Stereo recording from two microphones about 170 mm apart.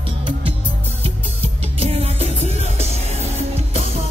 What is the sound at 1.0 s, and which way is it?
Music, 35° right (ahead or behind).